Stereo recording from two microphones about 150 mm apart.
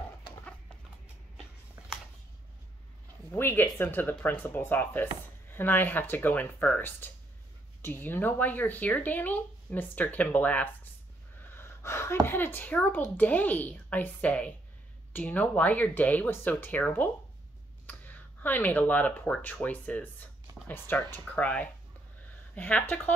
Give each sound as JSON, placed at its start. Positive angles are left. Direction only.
{"t": 3.3, "sound": "speech", "side_deg": 15}
{"t": 11.5, "sound": "gasp", "side_deg": 15}
{"t": 12.3, "sound": "speech", "side_deg": 15}